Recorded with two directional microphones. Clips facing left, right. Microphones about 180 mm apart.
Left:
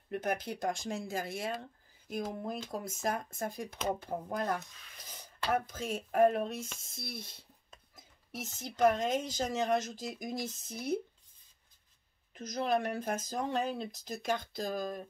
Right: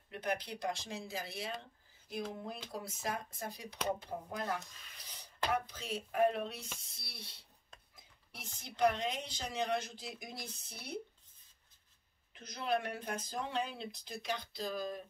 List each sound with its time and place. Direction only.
0.1 s speech: 45° left (ahead or behind)
7.9 s a sound: 45° left (ahead or behind)
8.5 s speech: 45° left (ahead or behind)
12.4 s speech: 45° left (ahead or behind)